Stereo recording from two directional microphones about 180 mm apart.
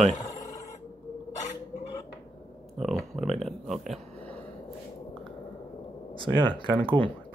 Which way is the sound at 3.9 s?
10° left (ahead or behind).